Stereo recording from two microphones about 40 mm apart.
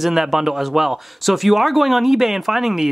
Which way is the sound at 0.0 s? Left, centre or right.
Centre.